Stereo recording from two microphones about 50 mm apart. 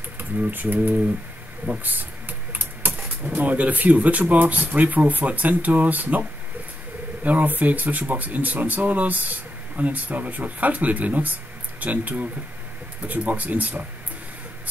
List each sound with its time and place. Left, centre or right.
0.2 s speech: right
7.2 s speech: right